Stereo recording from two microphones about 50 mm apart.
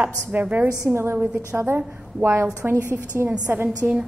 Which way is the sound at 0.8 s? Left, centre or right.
Right.